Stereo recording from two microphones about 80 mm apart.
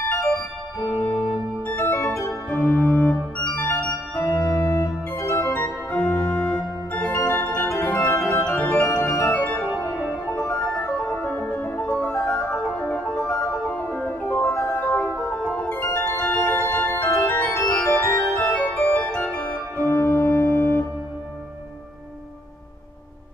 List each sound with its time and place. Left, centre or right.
0.7 s keyboard: left
1.8 s organ: left
7.2 s organ: left
10.3 s music: centre
15.8 s organ: left
17.3 s organ: left
18.8 s music: left
19.8 s music: left